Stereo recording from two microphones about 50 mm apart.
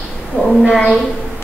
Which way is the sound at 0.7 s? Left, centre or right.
Centre.